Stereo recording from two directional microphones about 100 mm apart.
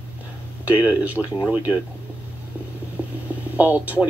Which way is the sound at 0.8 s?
15° right (ahead or behind).